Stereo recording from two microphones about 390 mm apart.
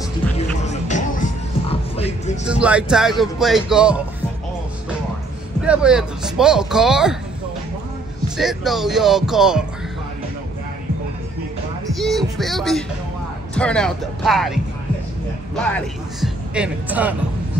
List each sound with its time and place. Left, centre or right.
0.4 s music: centre
2.4 s speech: centre
5.7 s speech: centre
8.4 s speech: centre
11.9 s speech: centre